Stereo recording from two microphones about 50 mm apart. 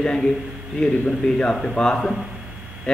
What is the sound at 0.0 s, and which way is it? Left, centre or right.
A man's voice, centre.